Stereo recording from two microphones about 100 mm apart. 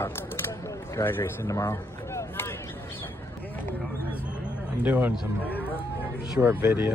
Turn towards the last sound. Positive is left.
turn(degrees=-20)  # may be behind; listen again after turning